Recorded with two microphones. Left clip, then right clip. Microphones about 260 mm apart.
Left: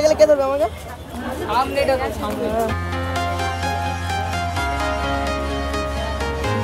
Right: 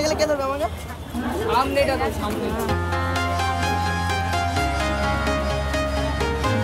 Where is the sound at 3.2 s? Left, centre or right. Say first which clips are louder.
Left 2 dB; centre.